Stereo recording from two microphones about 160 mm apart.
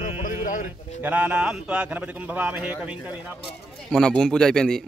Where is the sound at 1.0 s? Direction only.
10° right (ahead or behind).